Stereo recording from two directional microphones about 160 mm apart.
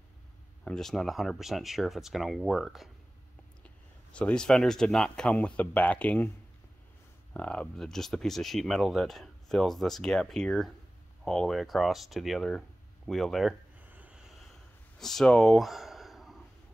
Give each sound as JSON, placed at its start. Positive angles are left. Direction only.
{"t": 0.7, "sound": "speech", "side_deg": 5}
{"t": 4.1, "sound": "speech", "side_deg": 5}
{"t": 7.3, "sound": "speech", "side_deg": 10}
{"t": 15.0, "sound": "a sound", "side_deg": 0}